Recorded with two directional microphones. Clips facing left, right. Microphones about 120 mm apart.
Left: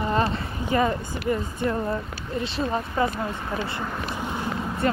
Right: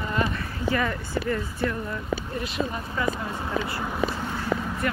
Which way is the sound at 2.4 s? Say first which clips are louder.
Left 3 dB; 30° left (ahead or behind).